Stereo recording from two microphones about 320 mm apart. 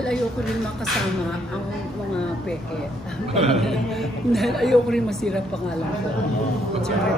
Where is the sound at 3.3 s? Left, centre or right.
Centre.